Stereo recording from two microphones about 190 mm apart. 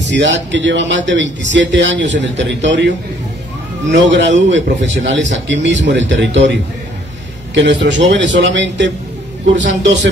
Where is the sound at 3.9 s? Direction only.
70° right (ahead or behind).